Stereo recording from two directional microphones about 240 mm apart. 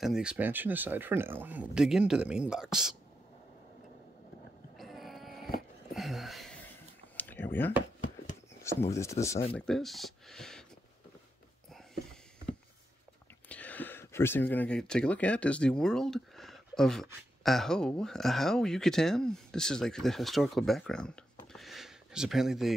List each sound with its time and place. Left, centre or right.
0.0 s speech: centre
4.7 s a sound: centre
8.7 s speech: centre
9.2 s speech: left
9.5 s speech: centre
13.5 s speech: centre